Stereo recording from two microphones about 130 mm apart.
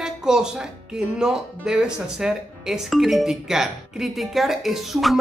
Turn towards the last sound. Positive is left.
turn(degrees=0)  # may be behind; listen again after turning